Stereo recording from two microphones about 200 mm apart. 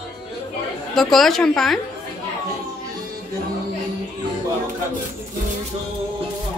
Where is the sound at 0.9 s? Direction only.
Centre (ahead or behind).